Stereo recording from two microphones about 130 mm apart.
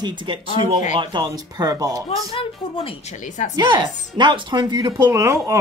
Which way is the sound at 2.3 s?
45° left (ahead or behind).